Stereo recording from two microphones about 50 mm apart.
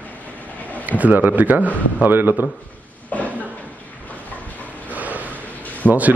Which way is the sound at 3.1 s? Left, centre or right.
Left.